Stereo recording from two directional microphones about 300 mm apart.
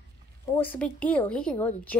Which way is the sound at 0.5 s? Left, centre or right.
Centre.